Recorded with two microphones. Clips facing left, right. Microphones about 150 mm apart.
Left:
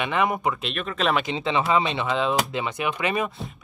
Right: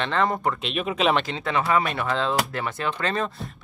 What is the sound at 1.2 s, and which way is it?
Speech, 20° left (ahead or behind).